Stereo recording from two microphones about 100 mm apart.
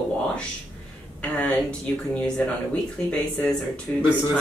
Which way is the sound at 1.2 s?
10° left (ahead or behind).